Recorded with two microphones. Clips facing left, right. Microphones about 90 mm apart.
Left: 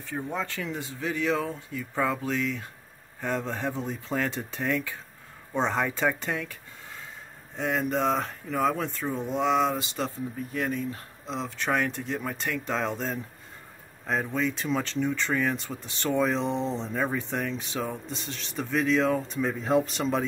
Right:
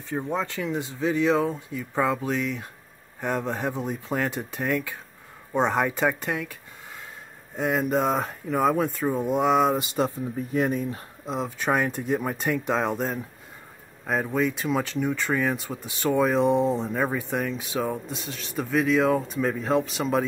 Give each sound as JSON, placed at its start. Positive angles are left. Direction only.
{"t": 0.0, "sound": "speech", "side_deg": -20}